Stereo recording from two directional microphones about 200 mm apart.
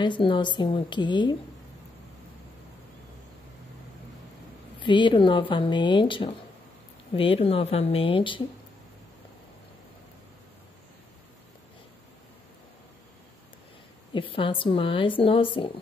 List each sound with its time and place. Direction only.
0.0 s a woman's voice: 25° left (ahead or behind)
4.7 s a woman's voice: 25° left (ahead or behind)
14.1 s a woman's voice: 25° left (ahead or behind)